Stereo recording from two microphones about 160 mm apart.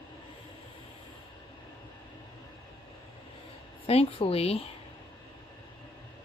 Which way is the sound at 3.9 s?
40° left (ahead or behind).